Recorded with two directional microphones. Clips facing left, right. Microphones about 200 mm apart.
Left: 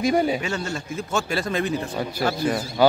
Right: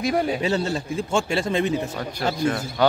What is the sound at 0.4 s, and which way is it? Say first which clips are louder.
Speech: right 5 dB; 35° right (ahead or behind).